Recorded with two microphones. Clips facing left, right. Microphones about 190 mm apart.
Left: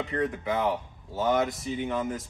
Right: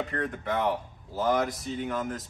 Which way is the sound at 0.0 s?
Centre (ahead or behind).